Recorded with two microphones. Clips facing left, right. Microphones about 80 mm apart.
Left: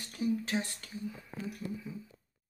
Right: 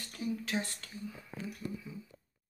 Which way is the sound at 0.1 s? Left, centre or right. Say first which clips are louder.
Left 4 dB; left.